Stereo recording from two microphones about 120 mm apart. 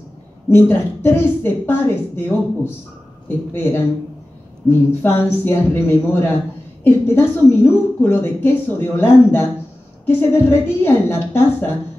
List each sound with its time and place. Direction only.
0.5 s a woman's voice: 20° left (ahead or behind)